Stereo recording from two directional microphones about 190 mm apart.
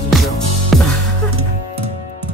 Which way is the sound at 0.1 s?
Centre (ahead or behind).